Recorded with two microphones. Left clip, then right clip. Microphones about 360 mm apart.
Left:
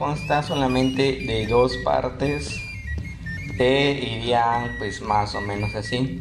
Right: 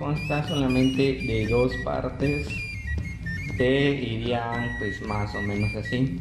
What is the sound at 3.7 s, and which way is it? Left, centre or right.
Mantra, centre.